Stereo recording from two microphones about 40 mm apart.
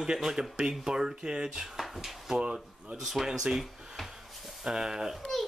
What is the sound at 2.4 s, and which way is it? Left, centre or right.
Speech, right.